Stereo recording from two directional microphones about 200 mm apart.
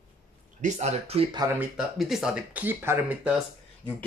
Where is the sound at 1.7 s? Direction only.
Centre (ahead or behind).